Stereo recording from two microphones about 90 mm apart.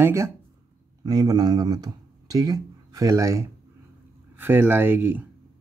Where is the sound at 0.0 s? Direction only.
30° right (ahead or behind).